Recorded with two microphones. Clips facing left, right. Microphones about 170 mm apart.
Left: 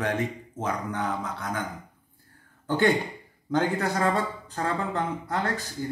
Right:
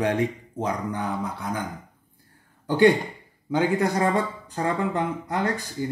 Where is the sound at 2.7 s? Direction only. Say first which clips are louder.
Right 5 dB; 10° right (ahead or behind).